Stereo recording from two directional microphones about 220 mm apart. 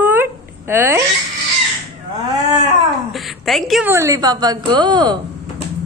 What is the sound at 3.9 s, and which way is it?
A woman's voice, 15° right (ahead or behind).